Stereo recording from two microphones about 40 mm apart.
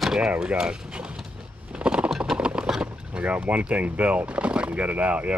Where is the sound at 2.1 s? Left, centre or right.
Centre.